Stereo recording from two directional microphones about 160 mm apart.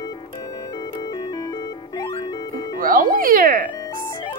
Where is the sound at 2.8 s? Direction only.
60° right (ahead or behind).